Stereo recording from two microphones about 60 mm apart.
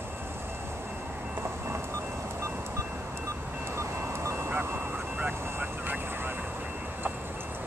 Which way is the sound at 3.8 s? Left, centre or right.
Right.